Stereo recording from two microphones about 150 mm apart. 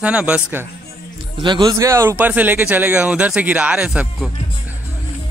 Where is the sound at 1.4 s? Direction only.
30° right (ahead or behind); by 4.3 s 5° right (ahead or behind).